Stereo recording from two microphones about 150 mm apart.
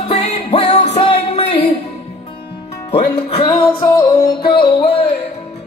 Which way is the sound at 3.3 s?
35° left (ahead or behind).